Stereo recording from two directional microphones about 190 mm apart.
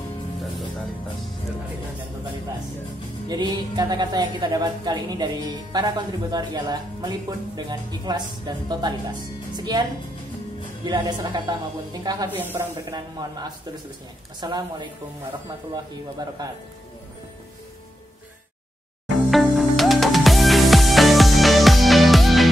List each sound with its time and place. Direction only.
3.3 s a woman's voice: 20° right (ahead or behind)
10.9 s a woman's voice: 20° right (ahead or behind)
19.3 s music: centre (ahead or behind)